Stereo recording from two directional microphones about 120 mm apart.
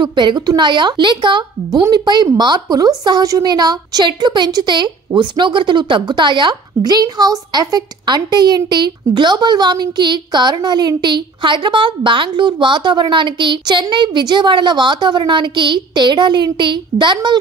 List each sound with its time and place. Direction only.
0.0 s a woman's voice: 40° right (ahead or behind)